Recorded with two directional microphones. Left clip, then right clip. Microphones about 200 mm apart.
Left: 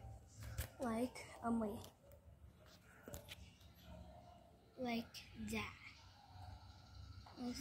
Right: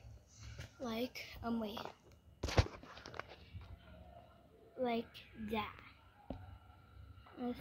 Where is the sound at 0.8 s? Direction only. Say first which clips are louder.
Right 1 dB; centre (ahead or behind).